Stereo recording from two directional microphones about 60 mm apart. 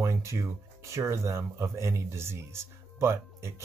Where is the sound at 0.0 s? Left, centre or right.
Right.